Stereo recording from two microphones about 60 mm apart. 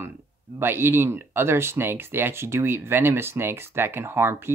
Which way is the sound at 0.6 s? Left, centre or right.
Right.